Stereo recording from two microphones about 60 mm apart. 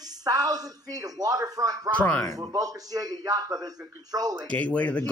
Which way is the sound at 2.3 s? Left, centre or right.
Right.